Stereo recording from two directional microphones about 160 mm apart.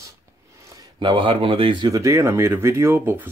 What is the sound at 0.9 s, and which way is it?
Speech, 30° right (ahead or behind).